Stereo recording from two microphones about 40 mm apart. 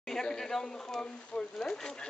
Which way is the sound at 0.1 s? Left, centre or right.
Centre.